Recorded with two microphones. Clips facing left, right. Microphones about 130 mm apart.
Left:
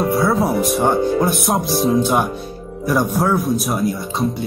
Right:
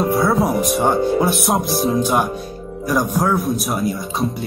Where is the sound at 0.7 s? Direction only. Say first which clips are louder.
Even; centre (ahead or behind).